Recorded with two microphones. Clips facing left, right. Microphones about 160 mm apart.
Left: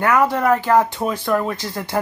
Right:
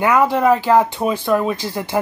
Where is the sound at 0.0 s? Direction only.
15° right (ahead or behind).